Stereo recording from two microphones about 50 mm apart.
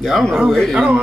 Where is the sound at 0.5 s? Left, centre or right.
Centre.